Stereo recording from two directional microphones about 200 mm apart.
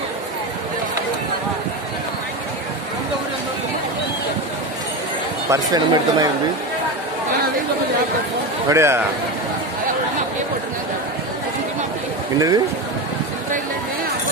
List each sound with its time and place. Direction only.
5.5 s speech: 20° right (ahead or behind)
8.6 s a man's voice: 15° right (ahead or behind)
12.4 s speech: 20° right (ahead or behind)